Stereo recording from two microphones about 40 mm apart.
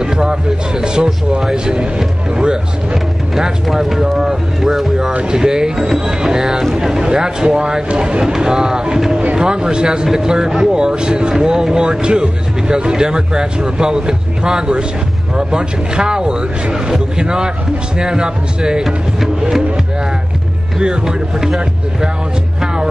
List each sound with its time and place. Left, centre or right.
0.0 s music: centre
3.7 s boat: centre
5.2 s a sound: centre
6.7 s speech: centre
20.8 s speech: right